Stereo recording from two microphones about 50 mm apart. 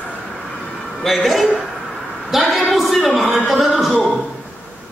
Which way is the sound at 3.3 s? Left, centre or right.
Centre.